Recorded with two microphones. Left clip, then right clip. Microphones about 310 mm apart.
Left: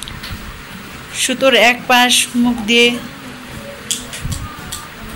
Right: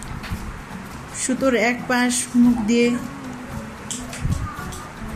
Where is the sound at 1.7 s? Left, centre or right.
Centre.